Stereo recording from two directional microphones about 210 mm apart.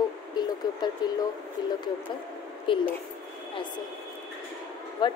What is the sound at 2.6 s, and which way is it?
Speech, 25° left (ahead or behind).